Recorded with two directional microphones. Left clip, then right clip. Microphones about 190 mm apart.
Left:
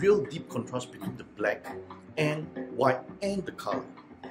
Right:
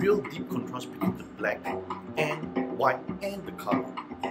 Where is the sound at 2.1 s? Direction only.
10° left (ahead or behind).